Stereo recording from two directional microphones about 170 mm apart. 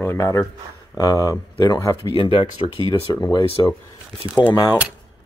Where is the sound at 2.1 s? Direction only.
30° left (ahead or behind).